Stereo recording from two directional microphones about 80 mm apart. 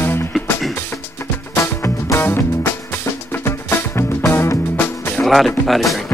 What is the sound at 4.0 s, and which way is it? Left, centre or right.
Music, left.